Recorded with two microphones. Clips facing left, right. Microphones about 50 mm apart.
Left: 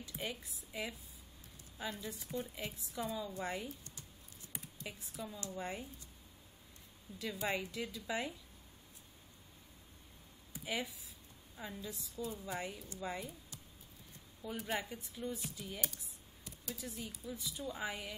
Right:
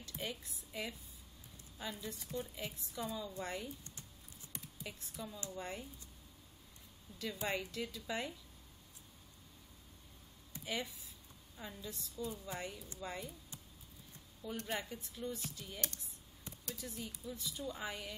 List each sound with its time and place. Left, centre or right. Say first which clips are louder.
0.0 s a woman's voice: left 1 dB; centre
2.0 s speech: left 1 dB; centre
4.5 s computer keyboard: left 1 dB; centre
5.5 s speech: left 3 dB; centre
7.1 s a woman's voice: left 1 dB; left
7.4 s speech: left 1 dB; centre
10.5 s a sound: left 1 dB; centre
11.5 s speech: left 2 dB; centre
14.4 s speech: left 2 dB; centre